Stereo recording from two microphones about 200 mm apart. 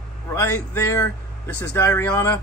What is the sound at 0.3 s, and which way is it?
A man's voice, 10° left (ahead or behind).